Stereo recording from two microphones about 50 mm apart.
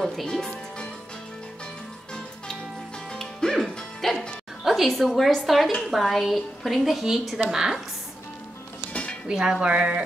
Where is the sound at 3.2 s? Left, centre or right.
Centre.